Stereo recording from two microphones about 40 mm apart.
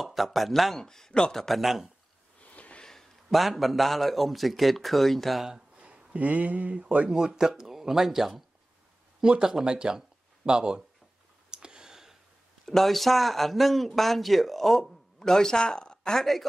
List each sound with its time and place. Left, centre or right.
0.0 s speech: centre
0.7 s speech: centre
1.6 s speech: centre
2.4 s sniff: left
2.8 s a sound: centre
3.3 s speech: centre
5.8 s speech: right
7.1 s speech: centre
9.2 s speech: centre
11.5 s clicking: right
12.6 s speech: centre